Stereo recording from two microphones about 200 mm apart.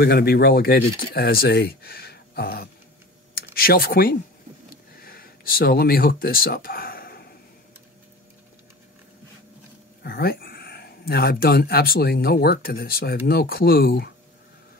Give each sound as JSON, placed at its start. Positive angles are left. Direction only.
{"t": 0.0, "sound": "speech", "side_deg": 50}
{"t": 4.9, "sound": "a sound", "side_deg": 50}
{"t": 10.0, "sound": "speech", "side_deg": 50}